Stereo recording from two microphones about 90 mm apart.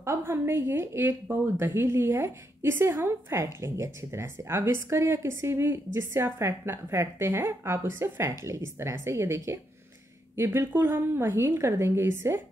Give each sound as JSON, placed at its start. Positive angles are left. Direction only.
{"t": 0.0, "sound": "a woman's voice", "side_deg": -30}